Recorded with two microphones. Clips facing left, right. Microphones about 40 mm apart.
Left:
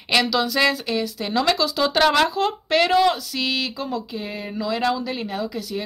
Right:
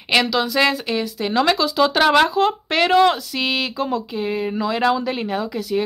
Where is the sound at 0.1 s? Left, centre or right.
Centre.